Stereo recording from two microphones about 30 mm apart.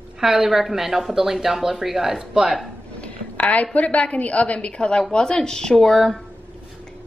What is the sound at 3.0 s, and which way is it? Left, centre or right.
A woman's voice, left.